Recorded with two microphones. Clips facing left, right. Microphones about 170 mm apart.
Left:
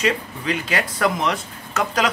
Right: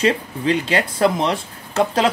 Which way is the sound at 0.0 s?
30° right (ahead or behind).